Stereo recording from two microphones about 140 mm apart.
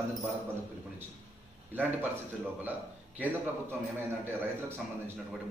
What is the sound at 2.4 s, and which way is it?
Speech, 10° right (ahead or behind).